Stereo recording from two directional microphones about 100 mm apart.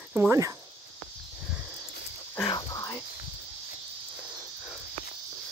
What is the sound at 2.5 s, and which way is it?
Whispering, 35° left (ahead or behind).